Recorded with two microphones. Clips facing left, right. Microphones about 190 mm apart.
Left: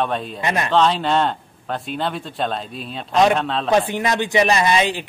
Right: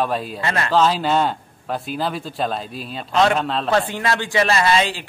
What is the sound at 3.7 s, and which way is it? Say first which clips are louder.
Speech: left 3 dB; 15° left (ahead or behind).